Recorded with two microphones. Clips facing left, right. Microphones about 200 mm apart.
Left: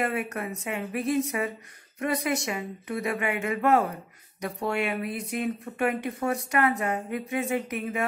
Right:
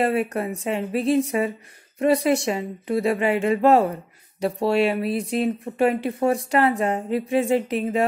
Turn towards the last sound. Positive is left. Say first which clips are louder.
# right 7 dB
turn(degrees=-30)  # may be behind; listen again after turning